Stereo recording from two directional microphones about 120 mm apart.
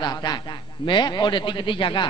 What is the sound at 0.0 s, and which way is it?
A man's voice, 35° left (ahead or behind).